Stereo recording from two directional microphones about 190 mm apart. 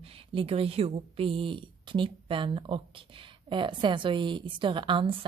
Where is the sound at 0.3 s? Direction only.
30° right (ahead or behind).